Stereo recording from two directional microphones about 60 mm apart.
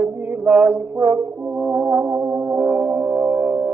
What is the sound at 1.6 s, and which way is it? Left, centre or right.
Brass instrument, centre.